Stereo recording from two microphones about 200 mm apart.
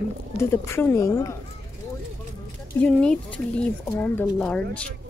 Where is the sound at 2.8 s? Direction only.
5° left (ahead or behind).